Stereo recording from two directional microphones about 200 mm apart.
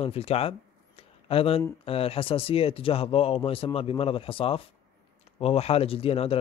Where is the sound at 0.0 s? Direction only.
30° left (ahead or behind).